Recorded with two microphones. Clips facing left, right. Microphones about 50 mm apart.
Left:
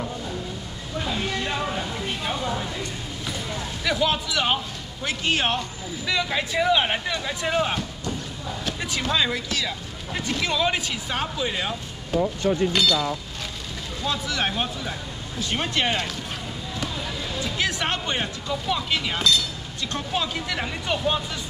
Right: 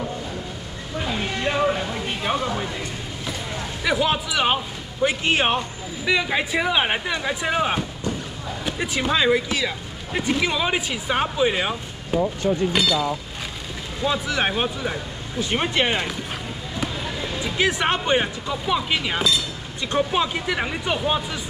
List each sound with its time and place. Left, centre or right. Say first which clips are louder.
0.9 s music: right 1 dB; centre
2.2 s speech: right 5 dB; right
3.8 s speech: right 2 dB; centre
17.4 s speech: right 4 dB; centre